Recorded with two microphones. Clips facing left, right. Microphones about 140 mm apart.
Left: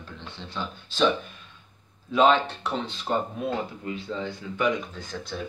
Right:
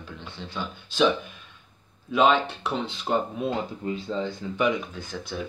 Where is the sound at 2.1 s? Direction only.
5° right (ahead or behind).